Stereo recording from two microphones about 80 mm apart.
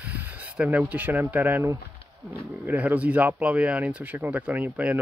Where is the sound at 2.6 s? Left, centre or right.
Right.